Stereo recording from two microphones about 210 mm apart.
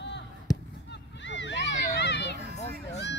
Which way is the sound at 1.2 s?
55° left (ahead or behind).